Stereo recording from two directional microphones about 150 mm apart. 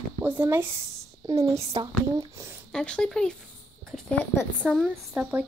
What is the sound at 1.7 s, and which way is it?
Speech, 35° right (ahead or behind).